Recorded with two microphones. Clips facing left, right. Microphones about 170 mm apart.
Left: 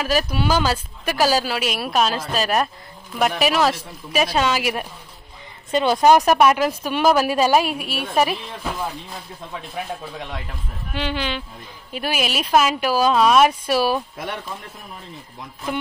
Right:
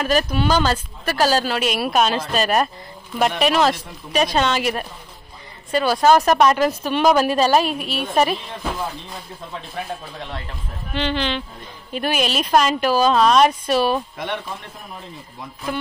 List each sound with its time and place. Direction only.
0.0 s speech: 5° left (ahead or behind)
5.7 s speech: 20° left (ahead or behind); by 14.3 s 5° left (ahead or behind)
15.7 s speech: 20° left (ahead or behind)